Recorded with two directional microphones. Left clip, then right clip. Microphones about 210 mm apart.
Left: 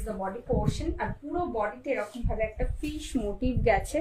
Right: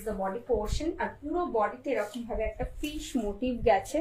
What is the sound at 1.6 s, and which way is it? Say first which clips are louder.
A woman's voice: right 1 dB; centre (ahead or behind).